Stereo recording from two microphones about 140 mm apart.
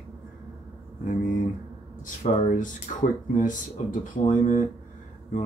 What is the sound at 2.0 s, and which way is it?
Speech, 65° left (ahead or behind).